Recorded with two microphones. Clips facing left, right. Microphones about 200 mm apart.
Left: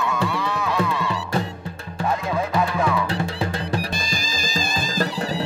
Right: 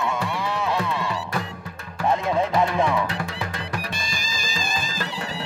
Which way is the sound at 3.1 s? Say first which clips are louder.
Left 5 dB; 30° left (ahead or behind).